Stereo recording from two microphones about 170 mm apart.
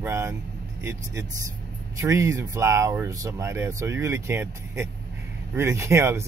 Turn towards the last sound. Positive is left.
turn(degrees=-15)  # may be behind; listen again after turning